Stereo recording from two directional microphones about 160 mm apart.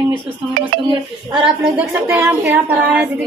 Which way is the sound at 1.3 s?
5° right (ahead or behind).